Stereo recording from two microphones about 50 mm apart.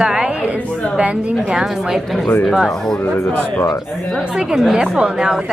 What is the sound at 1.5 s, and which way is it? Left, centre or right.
Speech, centre.